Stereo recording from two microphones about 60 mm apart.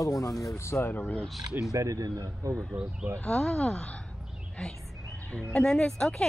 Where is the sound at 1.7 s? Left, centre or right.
Right.